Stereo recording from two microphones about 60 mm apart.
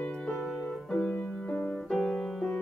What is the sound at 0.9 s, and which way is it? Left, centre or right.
Music, left.